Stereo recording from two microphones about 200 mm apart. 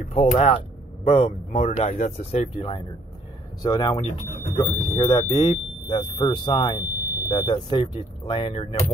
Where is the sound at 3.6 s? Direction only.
20° left (ahead or behind).